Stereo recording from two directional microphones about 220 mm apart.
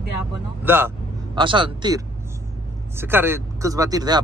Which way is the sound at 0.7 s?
10° right (ahead or behind).